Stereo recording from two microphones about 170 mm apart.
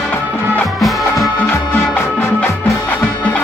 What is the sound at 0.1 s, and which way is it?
Music, 5° left (ahead or behind).